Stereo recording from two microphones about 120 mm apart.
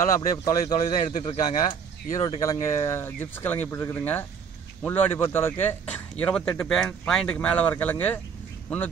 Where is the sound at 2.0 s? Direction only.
30° left (ahead or behind).